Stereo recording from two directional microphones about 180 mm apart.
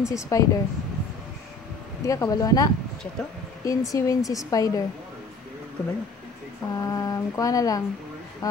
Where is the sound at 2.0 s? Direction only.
20° left (ahead or behind).